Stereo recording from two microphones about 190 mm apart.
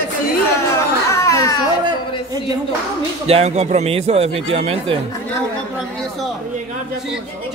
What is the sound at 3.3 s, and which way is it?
Speech, 35° right (ahead or behind).